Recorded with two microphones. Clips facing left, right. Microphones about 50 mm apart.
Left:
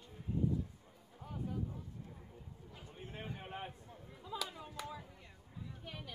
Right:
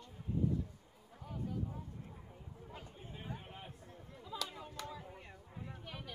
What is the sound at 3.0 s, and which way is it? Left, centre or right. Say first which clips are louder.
Chatter: left 3 dB; left.